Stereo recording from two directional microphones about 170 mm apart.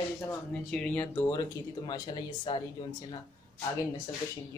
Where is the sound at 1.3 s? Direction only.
25° left (ahead or behind).